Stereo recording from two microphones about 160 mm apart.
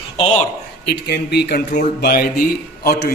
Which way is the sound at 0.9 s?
90° left.